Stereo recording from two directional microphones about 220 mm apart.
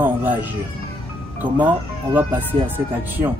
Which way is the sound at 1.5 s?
10° right (ahead or behind).